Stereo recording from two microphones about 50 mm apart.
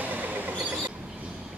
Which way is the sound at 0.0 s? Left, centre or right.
Right.